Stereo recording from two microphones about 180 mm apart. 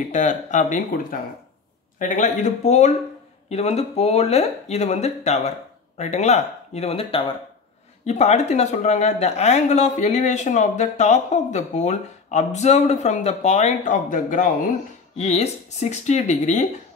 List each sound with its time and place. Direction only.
0.1 s speech: 40° left (ahead or behind)
15.1 s speech: 35° left (ahead or behind)